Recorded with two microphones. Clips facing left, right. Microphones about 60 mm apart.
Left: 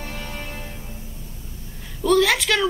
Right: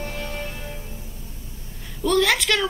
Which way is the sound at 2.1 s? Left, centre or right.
Centre.